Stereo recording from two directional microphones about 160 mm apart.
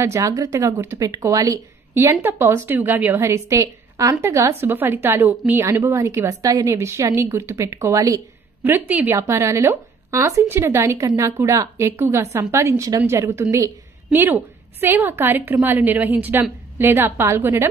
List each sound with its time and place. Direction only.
0.0 s a woman's voice: 20° right (ahead or behind)